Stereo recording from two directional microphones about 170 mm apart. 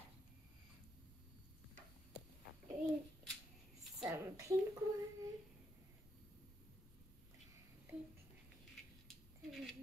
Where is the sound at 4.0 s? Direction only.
20° right (ahead or behind).